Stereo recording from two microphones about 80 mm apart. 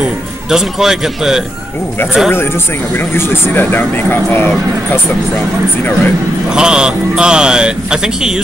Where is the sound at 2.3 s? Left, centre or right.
Left.